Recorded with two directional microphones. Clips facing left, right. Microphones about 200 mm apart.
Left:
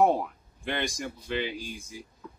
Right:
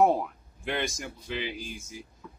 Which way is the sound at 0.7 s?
Centre (ahead or behind).